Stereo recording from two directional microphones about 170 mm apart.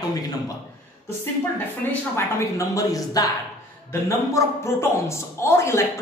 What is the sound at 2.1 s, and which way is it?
A man's voice, 20° left (ahead or behind).